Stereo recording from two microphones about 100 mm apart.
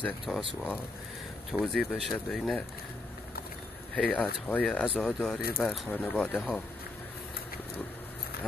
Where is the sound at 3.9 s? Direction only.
10° left (ahead or behind).